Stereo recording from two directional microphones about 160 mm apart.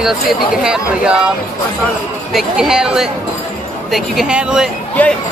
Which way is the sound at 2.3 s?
5° right (ahead or behind).